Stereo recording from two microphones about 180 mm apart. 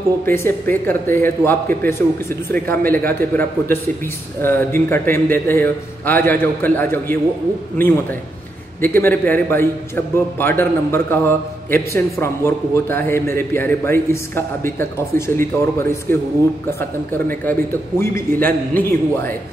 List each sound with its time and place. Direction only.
0.2 s a man's voice: 10° left (ahead or behind)
16.1 s speech: 50° right (ahead or behind)
17.3 s a man's voice: 10° left (ahead or behind)